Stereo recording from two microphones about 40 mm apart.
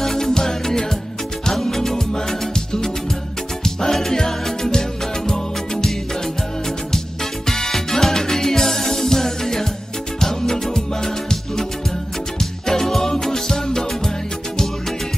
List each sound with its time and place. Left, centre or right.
0.0 s music: centre
7.4 s music: centre
12.4 s music: centre